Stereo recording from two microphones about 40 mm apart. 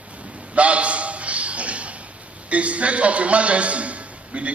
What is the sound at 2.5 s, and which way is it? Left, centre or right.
A man's voice, right.